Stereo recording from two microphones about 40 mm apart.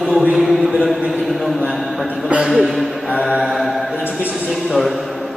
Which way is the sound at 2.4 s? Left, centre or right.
Centre.